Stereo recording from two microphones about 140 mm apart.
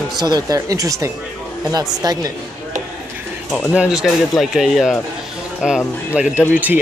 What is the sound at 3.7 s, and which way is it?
Speech, 5° right (ahead or behind).